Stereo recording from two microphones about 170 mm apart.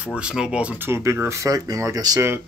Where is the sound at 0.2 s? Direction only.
5° right (ahead or behind).